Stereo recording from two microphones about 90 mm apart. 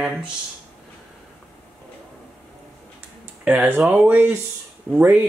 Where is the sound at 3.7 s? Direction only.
15° right (ahead or behind).